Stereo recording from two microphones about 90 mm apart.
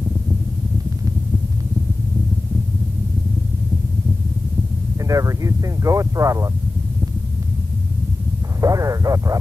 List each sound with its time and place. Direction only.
5.0 s speech: 40° right (ahead or behind)
8.5 s speech: 40° right (ahead or behind)